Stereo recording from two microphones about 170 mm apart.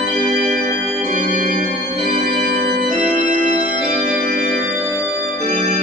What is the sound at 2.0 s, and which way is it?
Organ, 70° right (ahead or behind).